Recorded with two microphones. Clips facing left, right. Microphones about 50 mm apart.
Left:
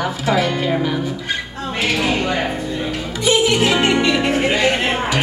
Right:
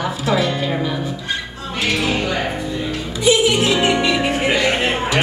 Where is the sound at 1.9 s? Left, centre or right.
Left.